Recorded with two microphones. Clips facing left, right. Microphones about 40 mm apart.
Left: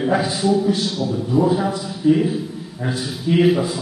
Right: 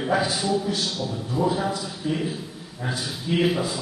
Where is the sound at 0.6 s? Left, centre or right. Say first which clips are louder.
Left 7 dB; centre.